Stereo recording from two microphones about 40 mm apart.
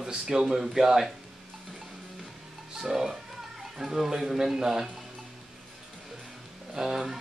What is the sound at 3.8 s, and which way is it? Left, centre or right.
Speech, centre.